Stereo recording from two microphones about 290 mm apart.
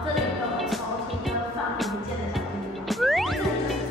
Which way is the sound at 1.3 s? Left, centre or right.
Centre.